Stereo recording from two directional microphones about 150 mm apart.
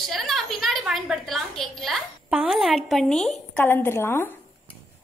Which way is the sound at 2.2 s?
5° right (ahead or behind).